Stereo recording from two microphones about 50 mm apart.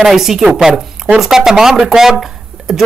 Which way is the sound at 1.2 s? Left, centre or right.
Centre.